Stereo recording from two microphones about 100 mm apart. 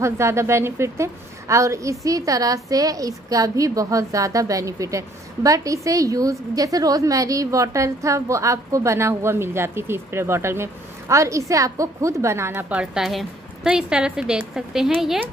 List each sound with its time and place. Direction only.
0.0 s a woman's voice: 30° right (ahead or behind)
12.6 s a woman's voice: 10° right (ahead or behind)